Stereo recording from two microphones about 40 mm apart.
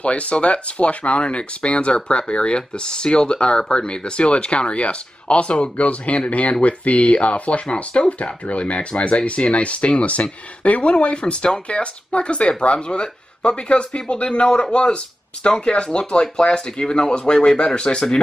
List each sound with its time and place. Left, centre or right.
0.0 s speech: left